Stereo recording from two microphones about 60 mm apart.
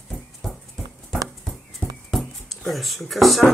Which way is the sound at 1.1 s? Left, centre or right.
Centre.